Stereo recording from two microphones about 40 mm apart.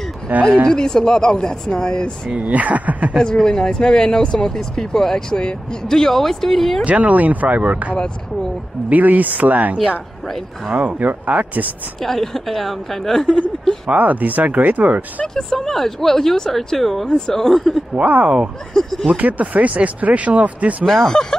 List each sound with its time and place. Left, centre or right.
0.3 s speech: right
0.7 s speech: centre
2.3 s speech: right
3.3 s speech: centre
6.8 s speech: right
12.0 s a woman's voice: centre
13.9 s speech: right
15.2 s speech: centre
18.0 s speech: right
18.7 s speech: centre
19.1 s speech: right
20.8 s a woman's voice: centre
21.1 s speech: centre